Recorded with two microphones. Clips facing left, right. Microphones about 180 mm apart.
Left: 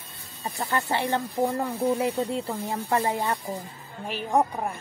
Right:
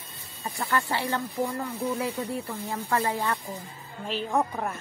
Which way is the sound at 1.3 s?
50° left (ahead or behind).